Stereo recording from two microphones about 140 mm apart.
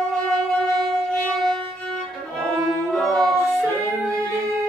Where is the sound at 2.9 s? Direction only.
5° left (ahead or behind).